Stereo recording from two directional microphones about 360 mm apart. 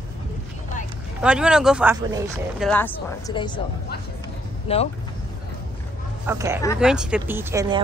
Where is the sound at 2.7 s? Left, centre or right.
Centre.